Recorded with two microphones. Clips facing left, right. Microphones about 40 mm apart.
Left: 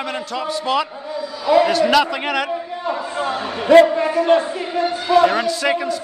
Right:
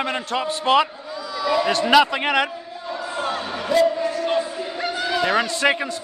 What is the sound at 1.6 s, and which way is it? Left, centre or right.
Speech, centre.